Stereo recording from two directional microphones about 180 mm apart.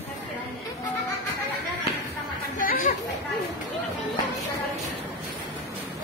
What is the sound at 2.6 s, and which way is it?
Chatter, 50° left (ahead or behind).